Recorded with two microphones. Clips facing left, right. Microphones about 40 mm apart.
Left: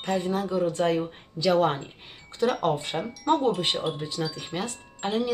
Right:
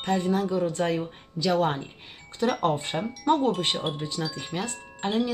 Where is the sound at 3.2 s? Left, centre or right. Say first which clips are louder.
Even; centre.